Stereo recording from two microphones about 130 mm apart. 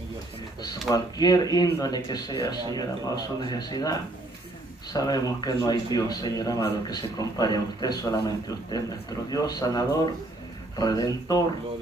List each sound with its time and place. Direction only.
0.6 s speech: 30° left (ahead or behind)
4.9 s speech: 30° left (ahead or behind)